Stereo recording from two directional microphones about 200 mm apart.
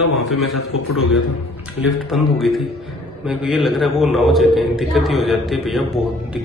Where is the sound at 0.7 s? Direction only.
90° left.